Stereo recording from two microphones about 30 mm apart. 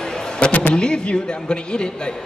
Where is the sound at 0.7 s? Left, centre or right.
Left.